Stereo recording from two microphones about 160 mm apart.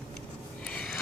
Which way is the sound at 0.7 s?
5° left (ahead or behind).